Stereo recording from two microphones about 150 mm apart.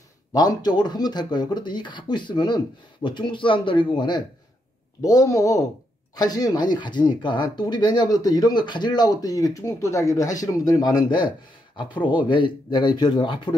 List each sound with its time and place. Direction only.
0.3 s a man's voice: 25° left (ahead or behind)